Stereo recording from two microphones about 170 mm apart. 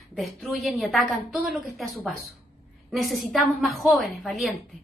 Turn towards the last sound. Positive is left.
turn(degrees=0)  # may be behind; listen again after turning